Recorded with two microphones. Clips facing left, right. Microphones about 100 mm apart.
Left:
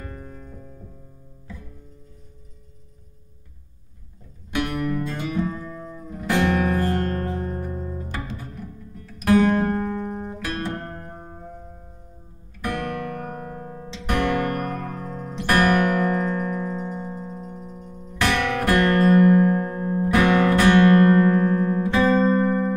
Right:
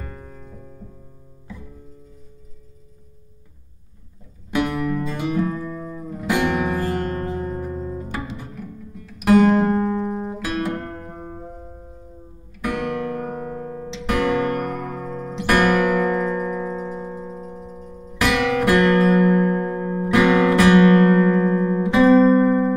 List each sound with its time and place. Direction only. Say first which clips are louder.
0.0 s music: even; 5° right (ahead or behind)
4.7 s music: right 2 dB; 5° right (ahead or behind)
9.6 s music: right 4 dB; 25° right (ahead or behind)
10.0 s guitar: right 4 dB; 5° right (ahead or behind)
12.6 s music: right 3 dB; 5° right (ahead or behind)